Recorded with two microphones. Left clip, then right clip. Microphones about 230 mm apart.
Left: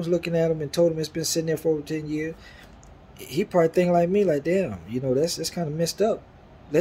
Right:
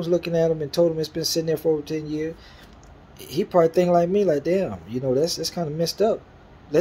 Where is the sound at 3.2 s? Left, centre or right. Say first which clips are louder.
Right 2 dB; centre.